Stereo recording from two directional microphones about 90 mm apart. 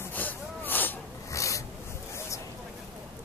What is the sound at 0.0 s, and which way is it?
Snort, 20° left (ahead or behind).